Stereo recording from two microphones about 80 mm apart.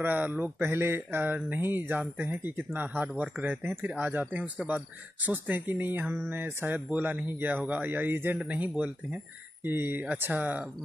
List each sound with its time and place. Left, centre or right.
0.0 s speech: centre
0.6 s speech: right
4.4 s speech: centre
4.7 s speech: right